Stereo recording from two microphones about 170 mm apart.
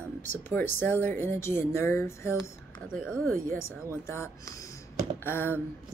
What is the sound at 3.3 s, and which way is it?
Speech, 55° right (ahead or behind).